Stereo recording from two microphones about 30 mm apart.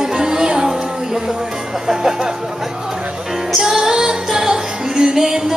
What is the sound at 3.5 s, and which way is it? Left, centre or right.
Music, centre.